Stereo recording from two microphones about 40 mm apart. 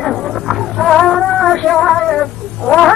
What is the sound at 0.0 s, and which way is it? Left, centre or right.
Roaring cats, centre.